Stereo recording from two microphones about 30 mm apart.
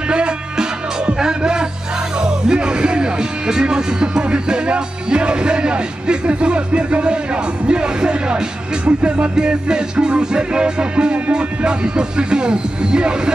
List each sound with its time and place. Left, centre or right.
0.1 s music: right
2.1 s speech: right
9.3 s speech: right